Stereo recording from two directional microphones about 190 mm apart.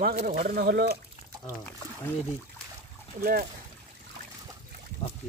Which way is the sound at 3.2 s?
50° right (ahead or behind).